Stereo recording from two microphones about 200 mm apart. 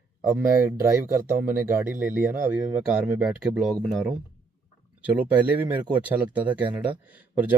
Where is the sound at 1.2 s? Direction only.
45° right (ahead or behind).